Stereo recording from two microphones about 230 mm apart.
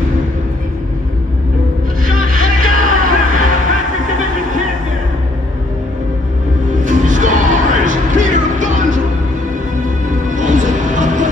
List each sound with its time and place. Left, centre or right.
2.0 s music: right
6.8 s music: right
10.3 s music: right